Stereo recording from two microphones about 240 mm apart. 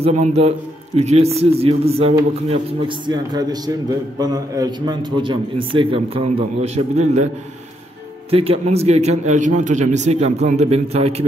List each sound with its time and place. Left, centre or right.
0.0 s a man's voice: right
8.3 s a man's voice: right